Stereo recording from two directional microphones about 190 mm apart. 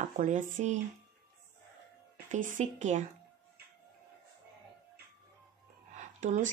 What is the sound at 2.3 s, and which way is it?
Speech, 40° right (ahead or behind).